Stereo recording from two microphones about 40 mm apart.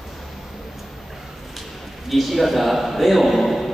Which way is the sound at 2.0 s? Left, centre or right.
Centre.